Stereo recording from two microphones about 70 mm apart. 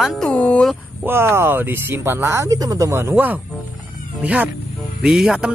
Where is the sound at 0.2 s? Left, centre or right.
Centre.